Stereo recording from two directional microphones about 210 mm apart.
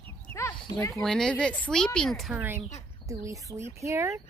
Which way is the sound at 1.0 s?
5° left (ahead or behind).